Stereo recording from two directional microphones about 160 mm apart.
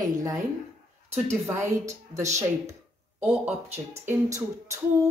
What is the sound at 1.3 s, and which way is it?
Female singing, 15° right (ahead or behind).